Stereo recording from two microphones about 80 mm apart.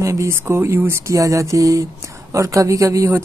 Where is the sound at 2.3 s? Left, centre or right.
Right.